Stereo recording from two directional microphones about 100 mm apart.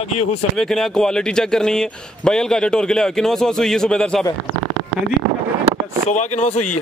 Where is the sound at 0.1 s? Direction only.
90° left.